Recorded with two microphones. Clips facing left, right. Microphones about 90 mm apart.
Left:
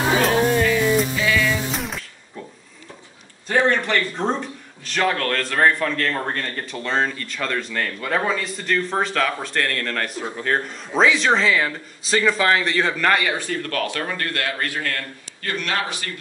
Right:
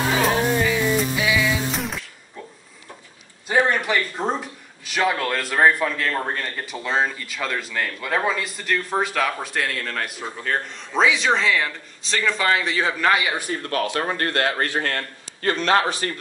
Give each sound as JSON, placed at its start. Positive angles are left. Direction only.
{"t": 0.5, "sound": "music", "side_deg": -15}
{"t": 1.7, "sound": "a sound", "side_deg": 0}
{"t": 3.4, "sound": "speech", "side_deg": -10}
{"t": 13.4, "sound": "a man's voice", "side_deg": -20}